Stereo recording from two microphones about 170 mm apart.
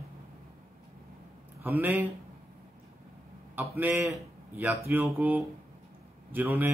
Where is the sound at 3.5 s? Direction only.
15° right (ahead or behind).